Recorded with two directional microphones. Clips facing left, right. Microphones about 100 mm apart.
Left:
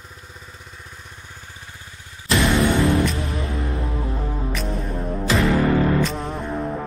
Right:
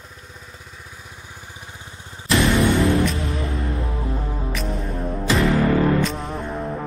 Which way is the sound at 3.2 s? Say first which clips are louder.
Even; 30° right (ahead or behind).